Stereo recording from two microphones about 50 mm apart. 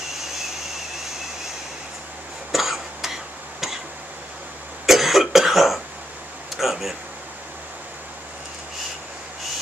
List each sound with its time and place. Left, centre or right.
2.5 s cough: centre
4.8 s cough: centre
6.5 s a sound: centre